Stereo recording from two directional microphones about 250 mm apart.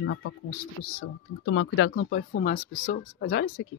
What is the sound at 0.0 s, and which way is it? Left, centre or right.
Speech, left.